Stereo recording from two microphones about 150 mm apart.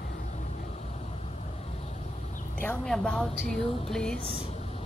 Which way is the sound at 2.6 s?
5° left (ahead or behind).